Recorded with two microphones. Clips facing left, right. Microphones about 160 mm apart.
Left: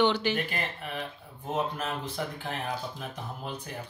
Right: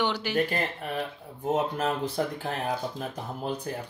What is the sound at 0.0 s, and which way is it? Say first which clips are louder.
Speech: left 3 dB; 10° right (ahead or behind).